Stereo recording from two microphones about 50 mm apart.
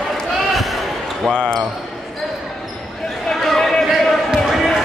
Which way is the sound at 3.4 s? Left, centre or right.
Centre.